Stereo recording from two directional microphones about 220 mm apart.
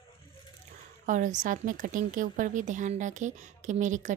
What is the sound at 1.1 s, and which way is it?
A woman's voice, 35° right (ahead or behind).